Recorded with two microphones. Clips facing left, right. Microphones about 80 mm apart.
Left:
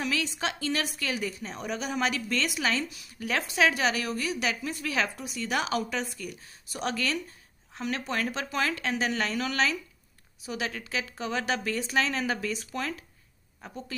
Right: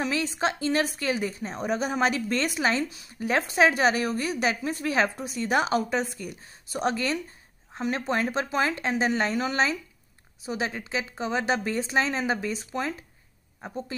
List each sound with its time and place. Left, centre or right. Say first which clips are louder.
0.0 s a woman's voice: right 4 dB; right